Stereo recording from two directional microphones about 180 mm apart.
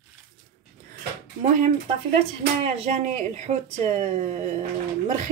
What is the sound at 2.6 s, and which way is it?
Speech, 40° right (ahead or behind).